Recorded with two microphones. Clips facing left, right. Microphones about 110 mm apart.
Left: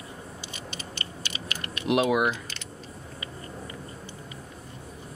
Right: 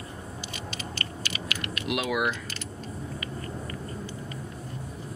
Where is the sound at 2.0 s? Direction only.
20° left (ahead or behind).